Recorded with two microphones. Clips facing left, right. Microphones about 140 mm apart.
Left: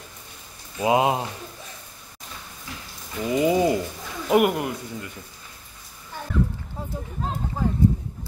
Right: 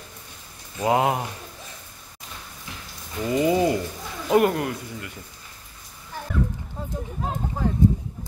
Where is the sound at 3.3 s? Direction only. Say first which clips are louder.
Even; 20° left (ahead or behind).